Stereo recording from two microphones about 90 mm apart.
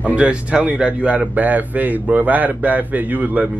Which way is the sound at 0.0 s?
15° right (ahead or behind).